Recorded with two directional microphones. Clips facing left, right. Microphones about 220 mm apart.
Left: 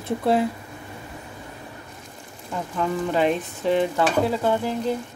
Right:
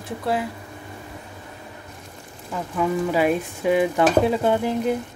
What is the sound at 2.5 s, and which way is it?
Stir, 5° right (ahead or behind).